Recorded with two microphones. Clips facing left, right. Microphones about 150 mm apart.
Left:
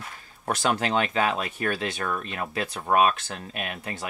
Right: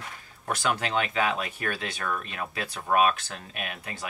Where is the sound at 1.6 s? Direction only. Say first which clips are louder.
Left 4 dB; 25° left (ahead or behind).